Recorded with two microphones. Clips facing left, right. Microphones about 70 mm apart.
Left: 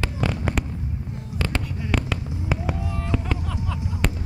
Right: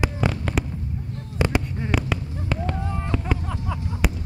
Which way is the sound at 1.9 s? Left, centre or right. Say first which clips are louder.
Right 1 dB; centre.